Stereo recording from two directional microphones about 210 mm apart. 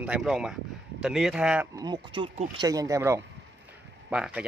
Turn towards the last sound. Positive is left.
turn(degrees=-5)  # may be behind; listen again after turning